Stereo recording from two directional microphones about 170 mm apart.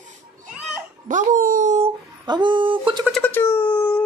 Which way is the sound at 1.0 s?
50° right (ahead or behind).